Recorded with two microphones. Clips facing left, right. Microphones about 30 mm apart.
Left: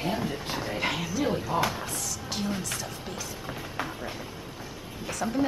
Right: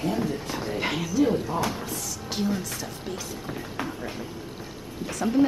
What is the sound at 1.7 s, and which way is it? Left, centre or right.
Music, centre.